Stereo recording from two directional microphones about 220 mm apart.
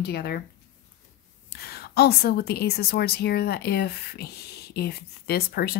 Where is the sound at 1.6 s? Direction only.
45° left (ahead or behind).